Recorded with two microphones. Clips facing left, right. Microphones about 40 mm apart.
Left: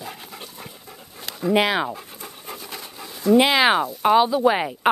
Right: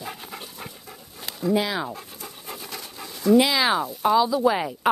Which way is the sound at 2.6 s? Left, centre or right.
Centre.